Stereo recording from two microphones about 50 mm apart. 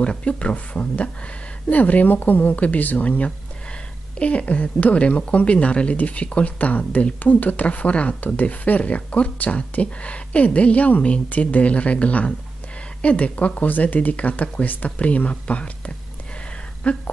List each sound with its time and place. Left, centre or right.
0.0 s speech: centre